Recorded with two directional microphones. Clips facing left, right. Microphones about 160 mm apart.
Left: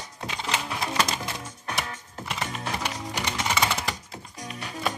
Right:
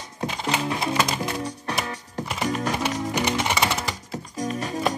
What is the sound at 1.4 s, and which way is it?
Music, 35° right (ahead or behind).